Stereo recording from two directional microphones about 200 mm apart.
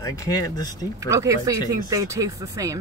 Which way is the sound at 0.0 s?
15° left (ahead or behind).